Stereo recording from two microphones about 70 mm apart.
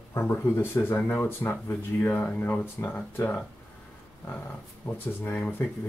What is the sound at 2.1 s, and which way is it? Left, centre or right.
Speech, left.